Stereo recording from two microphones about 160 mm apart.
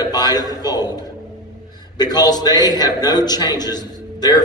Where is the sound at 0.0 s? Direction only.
25° left (ahead or behind).